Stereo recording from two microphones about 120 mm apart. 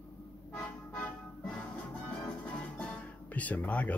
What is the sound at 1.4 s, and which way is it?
Music, 10° left (ahead or behind).